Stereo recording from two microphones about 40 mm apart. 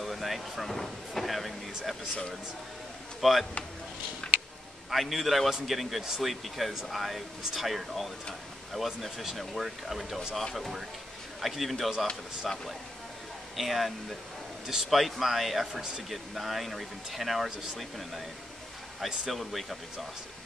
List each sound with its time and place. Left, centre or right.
0.0 s vehicle: centre
3.2 s speech: centre
4.2 s a sound: left
4.9 s speech: centre
19.3 s speech: centre